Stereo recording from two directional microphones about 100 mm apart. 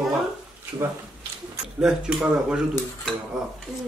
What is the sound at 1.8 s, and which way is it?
Speech, 10° right (ahead or behind).